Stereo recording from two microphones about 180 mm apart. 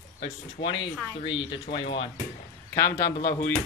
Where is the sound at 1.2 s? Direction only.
25° left (ahead or behind).